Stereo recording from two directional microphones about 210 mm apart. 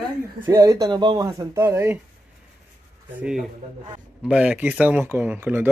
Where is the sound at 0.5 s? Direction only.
15° right (ahead or behind).